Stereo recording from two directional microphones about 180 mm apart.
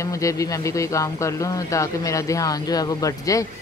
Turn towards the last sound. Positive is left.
turn(degrees=20)  # may be behind; listen again after turning